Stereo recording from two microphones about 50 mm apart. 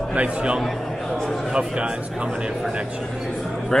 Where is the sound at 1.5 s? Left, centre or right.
Centre.